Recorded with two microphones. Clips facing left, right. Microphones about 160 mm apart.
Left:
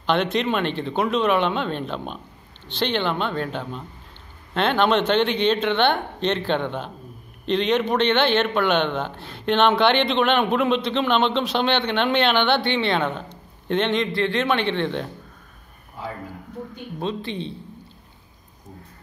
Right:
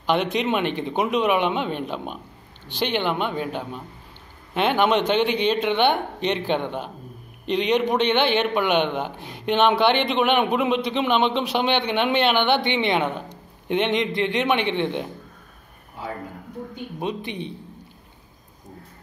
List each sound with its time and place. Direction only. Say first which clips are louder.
0.0 s a man's voice: even; 10° right (ahead or behind)
17.0 s a man's voice: left 1 dB; 15° right (ahead or behind)